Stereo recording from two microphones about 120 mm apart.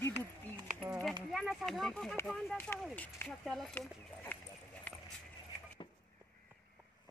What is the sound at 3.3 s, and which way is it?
Speech, 5° left (ahead or behind).